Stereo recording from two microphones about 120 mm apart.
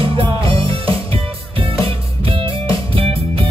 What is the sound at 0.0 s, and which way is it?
Music, 50° right (ahead or behind).